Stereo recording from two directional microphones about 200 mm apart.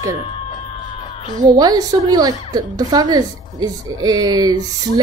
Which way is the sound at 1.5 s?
20° right (ahead or behind).